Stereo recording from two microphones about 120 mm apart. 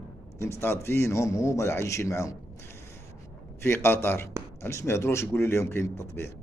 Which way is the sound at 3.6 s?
20° left (ahead or behind).